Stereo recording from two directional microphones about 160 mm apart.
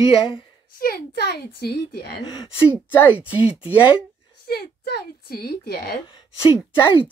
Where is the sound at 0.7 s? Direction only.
70° left (ahead or behind); by 2.2 s 85° left.